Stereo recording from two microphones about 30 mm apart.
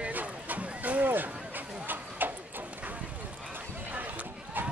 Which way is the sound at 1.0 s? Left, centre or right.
Right.